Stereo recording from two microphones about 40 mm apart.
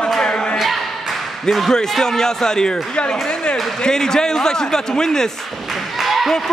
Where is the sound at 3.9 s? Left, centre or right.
Centre.